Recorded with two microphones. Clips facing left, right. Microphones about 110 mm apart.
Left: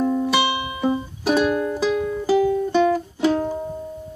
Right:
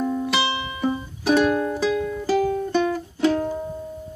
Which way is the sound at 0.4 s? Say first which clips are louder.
Left 2 dB; 15° left (ahead or behind).